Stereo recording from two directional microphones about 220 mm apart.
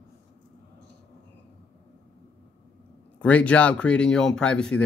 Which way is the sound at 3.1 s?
5° left (ahead or behind).